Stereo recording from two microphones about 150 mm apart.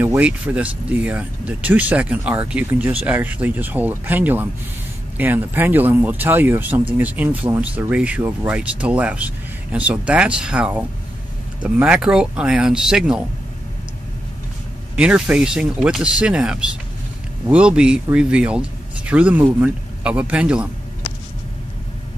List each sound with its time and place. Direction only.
0.0 s speech: 10° right (ahead or behind)
15.0 s speech: 10° right (ahead or behind)